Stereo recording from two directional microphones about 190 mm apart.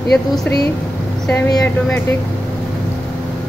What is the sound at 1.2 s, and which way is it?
Speech, 10° left (ahead or behind).